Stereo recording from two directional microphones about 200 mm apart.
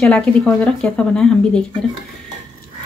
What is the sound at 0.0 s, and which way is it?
Speech, 5° left (ahead or behind).